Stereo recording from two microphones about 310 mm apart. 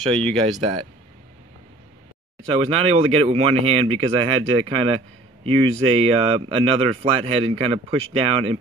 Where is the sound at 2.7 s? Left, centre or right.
Centre.